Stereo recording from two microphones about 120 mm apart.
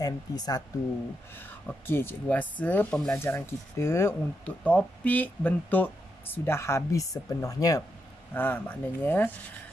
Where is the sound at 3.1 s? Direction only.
20° left (ahead or behind).